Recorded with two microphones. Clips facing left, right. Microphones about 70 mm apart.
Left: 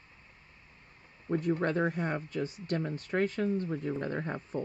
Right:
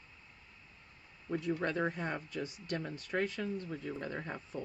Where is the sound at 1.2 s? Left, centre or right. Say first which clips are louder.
Left 5 dB; left.